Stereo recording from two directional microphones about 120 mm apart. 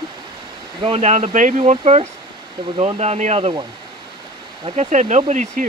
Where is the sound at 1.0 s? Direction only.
75° right (ahead or behind).